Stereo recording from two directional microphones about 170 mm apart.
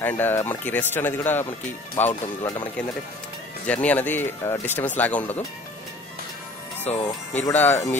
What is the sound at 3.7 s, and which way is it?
Speech, 10° left (ahead or behind).